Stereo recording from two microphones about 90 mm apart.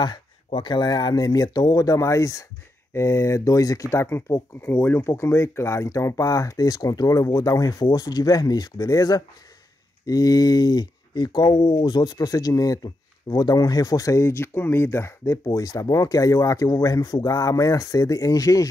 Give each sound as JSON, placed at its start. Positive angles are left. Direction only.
{"t": 0.5, "sound": "speech", "side_deg": 65}